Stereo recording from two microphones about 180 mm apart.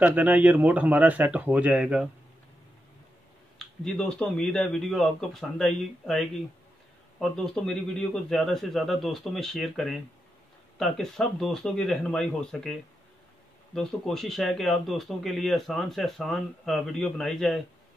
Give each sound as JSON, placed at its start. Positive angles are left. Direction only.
{"t": 0.0, "sound": "speech", "side_deg": -10}
{"t": 3.5, "sound": "speech", "side_deg": 0}
{"t": 13.7, "sound": "speech", "side_deg": 0}